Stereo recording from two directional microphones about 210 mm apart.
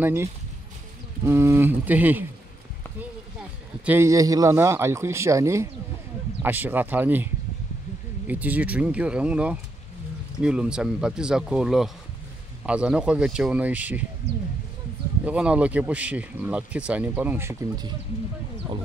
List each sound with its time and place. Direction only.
0.0 s speech: 10° right (ahead or behind)
3.8 s speech: 10° right (ahead or behind)
8.3 s speech: 5° right (ahead or behind)
14.2 s speech: 50° right (ahead or behind)
15.2 s speech: 5° right (ahead or behind)